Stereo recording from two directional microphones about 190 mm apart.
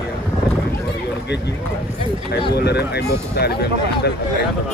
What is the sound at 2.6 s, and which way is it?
Speech, 60° left (ahead or behind).